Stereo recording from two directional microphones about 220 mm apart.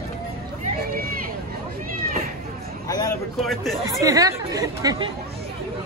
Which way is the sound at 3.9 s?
15° right (ahead or behind).